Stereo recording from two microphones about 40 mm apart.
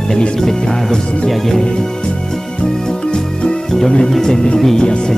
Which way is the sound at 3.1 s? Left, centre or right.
Centre.